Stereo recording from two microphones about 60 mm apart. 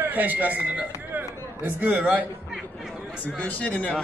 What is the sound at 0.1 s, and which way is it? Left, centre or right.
Speech, right.